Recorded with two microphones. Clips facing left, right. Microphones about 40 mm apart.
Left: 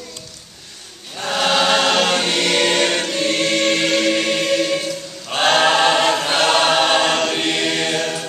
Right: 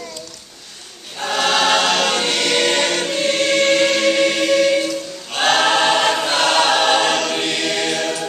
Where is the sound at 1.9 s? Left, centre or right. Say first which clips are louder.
Left 1 dB; centre.